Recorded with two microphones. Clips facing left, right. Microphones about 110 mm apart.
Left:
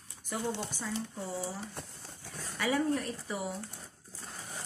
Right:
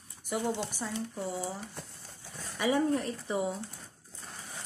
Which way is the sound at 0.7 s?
20° right (ahead or behind).